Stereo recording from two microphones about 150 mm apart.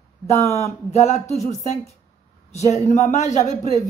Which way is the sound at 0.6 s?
50° left (ahead or behind).